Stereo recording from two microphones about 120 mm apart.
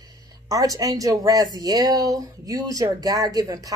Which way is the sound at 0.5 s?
30° right (ahead or behind).